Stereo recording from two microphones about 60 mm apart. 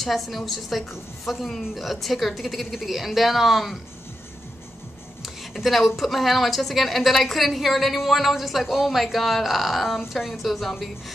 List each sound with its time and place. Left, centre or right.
0.0 s a woman's voice: centre
5.2 s a woman's voice: centre